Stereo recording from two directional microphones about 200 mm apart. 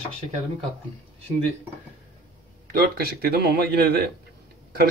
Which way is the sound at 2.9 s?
50° right (ahead or behind).